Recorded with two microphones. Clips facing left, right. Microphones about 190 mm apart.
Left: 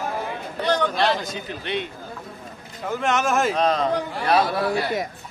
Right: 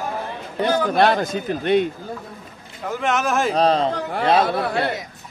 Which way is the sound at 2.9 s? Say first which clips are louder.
Even; centre (ahead or behind).